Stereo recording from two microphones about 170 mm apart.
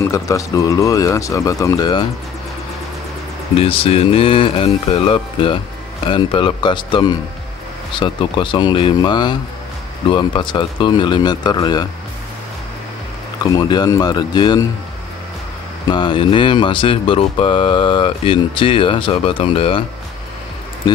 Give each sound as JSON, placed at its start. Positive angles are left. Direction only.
{"t": 0.0, "sound": "speech", "side_deg": 20}
{"t": 3.5, "sound": "speech", "side_deg": 35}
{"t": 13.4, "sound": "speech", "side_deg": 25}
{"t": 15.9, "sound": "speech", "side_deg": 30}